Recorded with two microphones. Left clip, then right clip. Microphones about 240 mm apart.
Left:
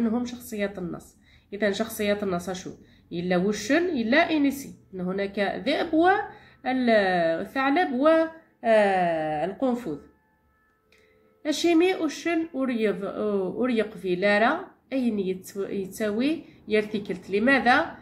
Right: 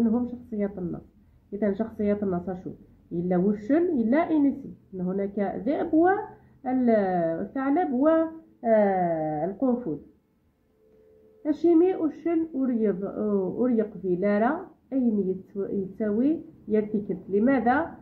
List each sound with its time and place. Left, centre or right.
0.1 s a woman's voice: centre
11.4 s a woman's voice: centre